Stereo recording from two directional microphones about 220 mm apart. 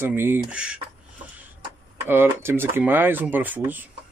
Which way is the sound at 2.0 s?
10° right (ahead or behind).